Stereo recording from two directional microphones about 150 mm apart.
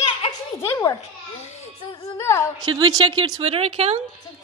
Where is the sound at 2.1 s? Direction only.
20° left (ahead or behind).